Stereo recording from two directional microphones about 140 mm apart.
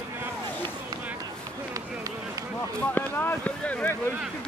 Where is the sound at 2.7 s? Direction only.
15° left (ahead or behind).